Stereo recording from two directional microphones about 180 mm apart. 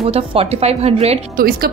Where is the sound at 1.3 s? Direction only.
55° right (ahead or behind).